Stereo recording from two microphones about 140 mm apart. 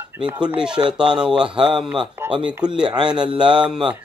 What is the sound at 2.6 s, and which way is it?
Speech, 30° right (ahead or behind).